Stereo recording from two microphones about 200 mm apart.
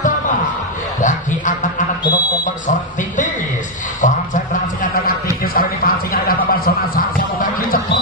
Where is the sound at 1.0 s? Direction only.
40° left (ahead or behind).